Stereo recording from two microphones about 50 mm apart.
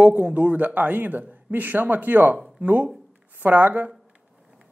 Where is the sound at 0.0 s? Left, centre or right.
Right.